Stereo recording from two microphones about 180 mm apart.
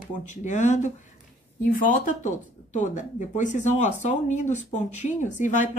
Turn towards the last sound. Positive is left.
turn(degrees=45)  # may be behind; listen again after turning